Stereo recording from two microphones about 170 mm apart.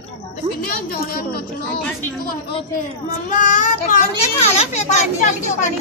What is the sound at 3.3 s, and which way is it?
A child's voice, 50° left (ahead or behind).